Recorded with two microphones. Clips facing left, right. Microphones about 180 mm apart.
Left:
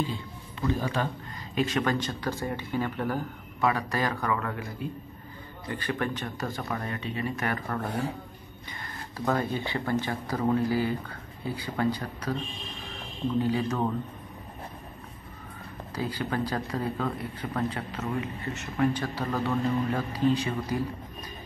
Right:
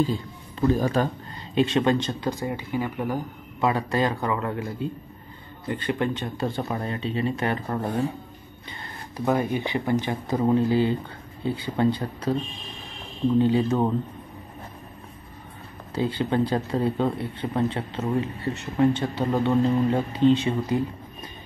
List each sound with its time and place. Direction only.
0.0 s a man's voice: 40° right (ahead or behind)
1.5 s speech: 25° right (ahead or behind)
3.7 s speech: 25° right (ahead or behind)
9.1 s speech: 15° right (ahead or behind)
13.4 s speech: 25° right (ahead or behind)
15.9 s speech: 25° right (ahead or behind)